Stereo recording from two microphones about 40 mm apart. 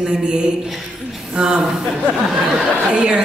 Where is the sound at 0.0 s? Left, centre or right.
Right.